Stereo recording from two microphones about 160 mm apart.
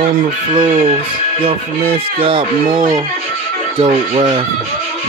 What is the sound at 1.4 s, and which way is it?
Speech, 35° right (ahead or behind).